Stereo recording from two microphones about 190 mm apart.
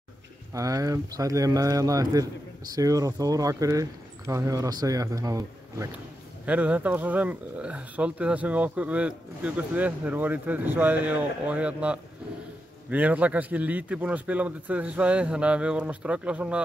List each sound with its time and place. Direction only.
0.5 s speech: 15° right (ahead or behind)
6.4 s speech: 5° right (ahead or behind)